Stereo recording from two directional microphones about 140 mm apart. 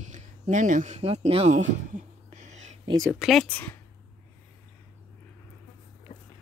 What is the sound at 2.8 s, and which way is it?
Speech, 25° right (ahead or behind).